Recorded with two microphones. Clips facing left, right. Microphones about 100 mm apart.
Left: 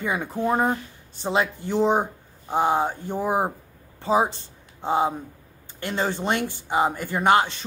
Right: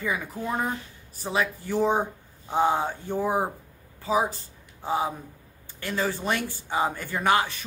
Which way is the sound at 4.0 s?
30° left (ahead or behind).